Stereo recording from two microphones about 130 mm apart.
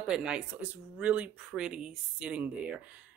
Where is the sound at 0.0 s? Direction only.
5° right (ahead or behind).